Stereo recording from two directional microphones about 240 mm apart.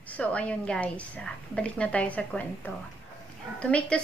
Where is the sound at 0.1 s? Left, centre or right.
Centre.